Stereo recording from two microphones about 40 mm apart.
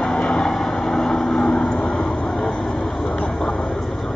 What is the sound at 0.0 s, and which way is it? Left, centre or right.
Train, left.